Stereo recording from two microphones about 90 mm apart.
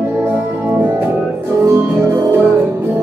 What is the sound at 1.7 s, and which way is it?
Music, 25° right (ahead or behind).